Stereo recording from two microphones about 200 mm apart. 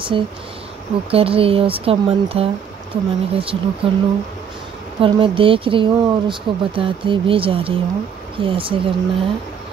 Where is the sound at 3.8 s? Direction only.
30° right (ahead or behind).